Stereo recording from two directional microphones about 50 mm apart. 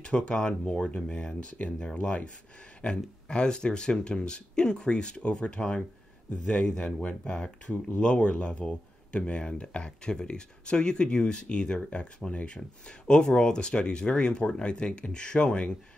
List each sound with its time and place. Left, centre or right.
0.0 s speech: centre